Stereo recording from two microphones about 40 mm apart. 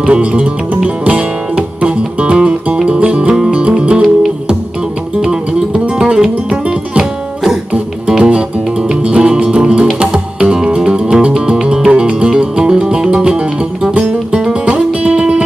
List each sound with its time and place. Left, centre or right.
0.0 s music: right
5.9 s music: centre
8.2 s music: right